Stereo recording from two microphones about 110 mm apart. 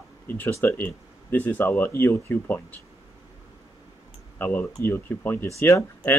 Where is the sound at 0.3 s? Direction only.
20° left (ahead or behind).